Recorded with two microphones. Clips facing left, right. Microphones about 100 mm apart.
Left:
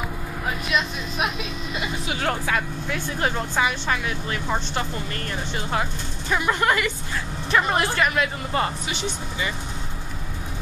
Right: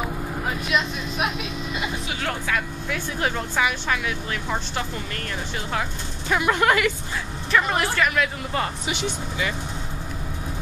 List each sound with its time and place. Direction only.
2.2 s speech: 30° left (ahead or behind)
3.3 s a woman's voice: 15° left (ahead or behind)
3.9 s speech: 5° left (ahead or behind)
6.2 s speech: 5° right (ahead or behind)
7.5 s speech: 15° left (ahead or behind)